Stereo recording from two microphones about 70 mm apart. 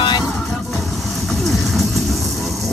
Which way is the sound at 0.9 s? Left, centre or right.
Centre.